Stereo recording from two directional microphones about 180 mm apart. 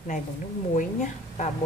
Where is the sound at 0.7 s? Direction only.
40° left (ahead or behind).